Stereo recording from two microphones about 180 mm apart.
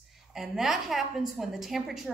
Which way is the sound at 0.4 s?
Centre (ahead or behind).